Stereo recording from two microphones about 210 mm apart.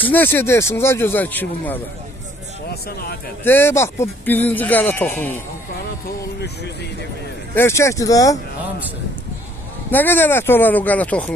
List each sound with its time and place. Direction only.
0.0 s speech: 10° left (ahead or behind)
2.7 s speech: 45° left (ahead or behind)
3.4 s speech: 10° left (ahead or behind)
6.0 s music: 50° left (ahead or behind)
7.5 s speech: 10° left (ahead or behind)
9.8 s speech: 10° left (ahead or behind)